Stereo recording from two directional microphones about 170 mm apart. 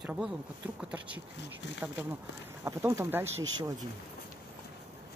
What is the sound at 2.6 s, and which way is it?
Speech, 15° right (ahead or behind).